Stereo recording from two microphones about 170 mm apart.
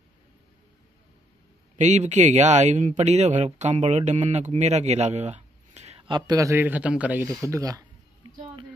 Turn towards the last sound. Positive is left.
turn(degrees=-20)  # may be behind; listen again after turning